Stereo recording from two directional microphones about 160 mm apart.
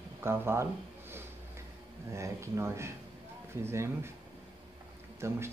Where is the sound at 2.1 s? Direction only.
20° right (ahead or behind).